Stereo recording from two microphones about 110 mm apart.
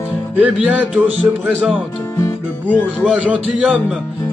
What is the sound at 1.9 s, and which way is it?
Music, 20° left (ahead or behind).